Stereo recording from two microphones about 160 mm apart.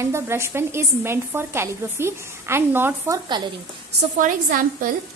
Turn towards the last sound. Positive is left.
turn(degrees=-55)  # may be behind; listen again after turning